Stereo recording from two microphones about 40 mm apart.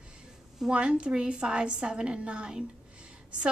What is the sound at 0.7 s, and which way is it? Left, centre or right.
A woman's voice, right.